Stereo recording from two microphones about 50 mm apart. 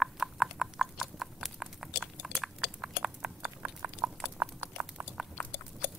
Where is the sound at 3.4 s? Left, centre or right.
Right.